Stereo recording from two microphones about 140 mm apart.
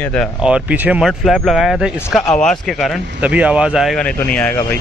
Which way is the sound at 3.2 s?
10° right (ahead or behind).